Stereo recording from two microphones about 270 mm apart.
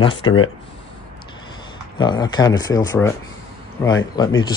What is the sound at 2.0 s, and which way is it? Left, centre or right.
Speech, centre.